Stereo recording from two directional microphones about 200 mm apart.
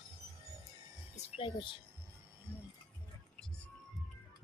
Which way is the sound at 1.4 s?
25° left (ahead or behind).